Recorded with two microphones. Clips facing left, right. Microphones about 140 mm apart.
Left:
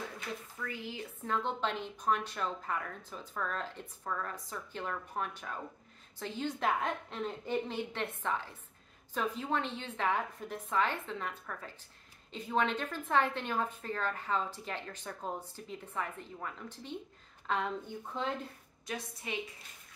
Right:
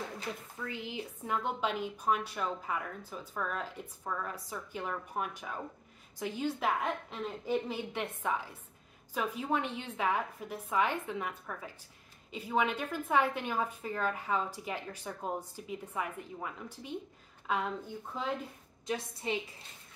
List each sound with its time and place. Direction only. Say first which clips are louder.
0.6 s a woman's voice: right 2 dB; 20° right (ahead or behind); by 18.3 s 5° right (ahead or behind)
19.2 s a woman's voice: right 6 dB; 30° right (ahead or behind)